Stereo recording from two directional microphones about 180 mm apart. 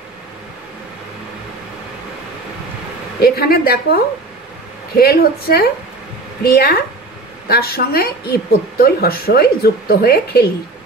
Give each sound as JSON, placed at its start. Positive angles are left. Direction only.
{"t": 3.2, "sound": "a woman's voice", "side_deg": 60}